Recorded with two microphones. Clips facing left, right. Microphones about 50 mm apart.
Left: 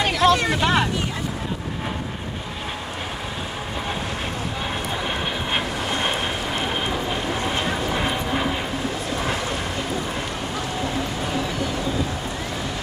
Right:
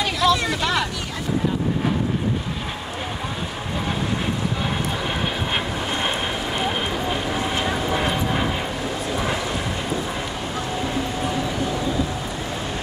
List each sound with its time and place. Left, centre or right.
0.0 s vehicle: left
7.6 s vehicle: centre